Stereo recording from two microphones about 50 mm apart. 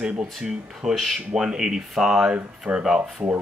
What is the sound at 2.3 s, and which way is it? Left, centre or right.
Speech, right.